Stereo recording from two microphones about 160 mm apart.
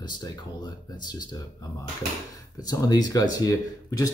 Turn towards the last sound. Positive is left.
turn(degrees=20)  # may be behind; listen again after turning